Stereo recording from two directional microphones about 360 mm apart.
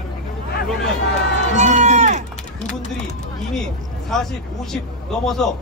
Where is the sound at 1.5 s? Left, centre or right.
Centre.